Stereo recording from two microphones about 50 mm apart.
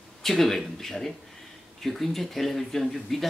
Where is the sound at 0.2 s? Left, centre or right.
Centre.